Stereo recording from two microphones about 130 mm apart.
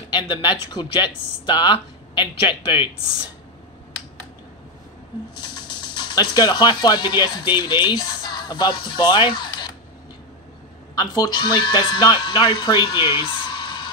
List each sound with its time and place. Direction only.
0.1 s speech: 35° left (ahead or behind)
5.3 s speech: 35° left (ahead or behind)
11.0 s speech: 30° left (ahead or behind)